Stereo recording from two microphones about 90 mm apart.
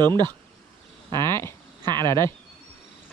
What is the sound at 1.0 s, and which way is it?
Speech, 30° left (ahead or behind).